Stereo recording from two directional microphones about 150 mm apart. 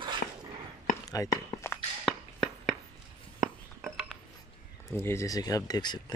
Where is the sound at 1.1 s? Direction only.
25° left (ahead or behind).